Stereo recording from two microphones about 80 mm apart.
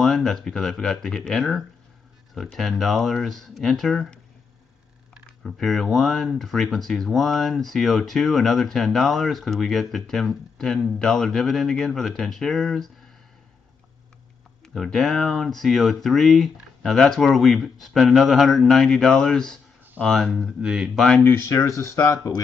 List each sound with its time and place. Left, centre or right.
0.0 s speech: centre
5.4 s speech: centre
14.6 s speech: centre
20.4 s speech: centre
21.4 s speech: left
22.1 s speech: left